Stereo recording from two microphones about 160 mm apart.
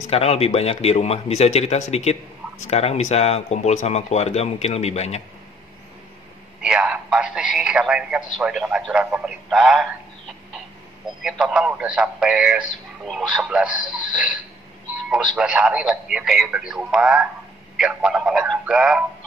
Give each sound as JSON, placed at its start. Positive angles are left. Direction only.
{"t": 0.1, "sound": "a man's voice", "side_deg": 40}
{"t": 6.6, "sound": "a sound", "side_deg": -5}
{"t": 8.4, "sound": "speech", "side_deg": -5}
{"t": 11.2, "sound": "a man's voice", "side_deg": -5}
{"t": 13.7, "sound": "a man's voice", "side_deg": -30}
{"t": 15.3, "sound": "speech", "side_deg": -5}